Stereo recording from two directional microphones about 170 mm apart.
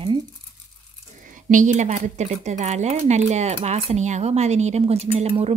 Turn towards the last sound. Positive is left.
turn(degrees=-35)  # may be behind; listen again after turning